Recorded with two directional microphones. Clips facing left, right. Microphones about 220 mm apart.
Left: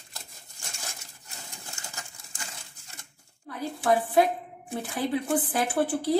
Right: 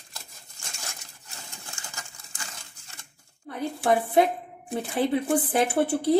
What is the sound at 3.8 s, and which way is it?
Speech, 25° right (ahead or behind).